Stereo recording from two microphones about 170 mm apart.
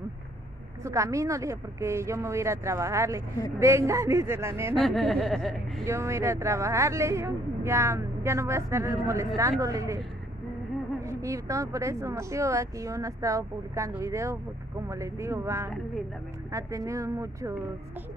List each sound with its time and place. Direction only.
0.8 s speech: 20° right (ahead or behind)
4.7 s speech: centre (ahead or behind)
5.9 s speech: 15° right (ahead or behind)